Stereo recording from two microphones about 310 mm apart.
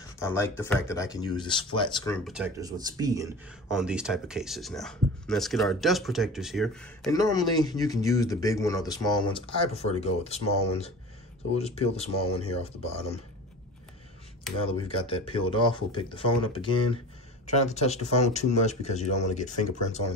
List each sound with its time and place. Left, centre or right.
0.2 s speech: centre
2.2 s speech: centre
14.9 s speech: centre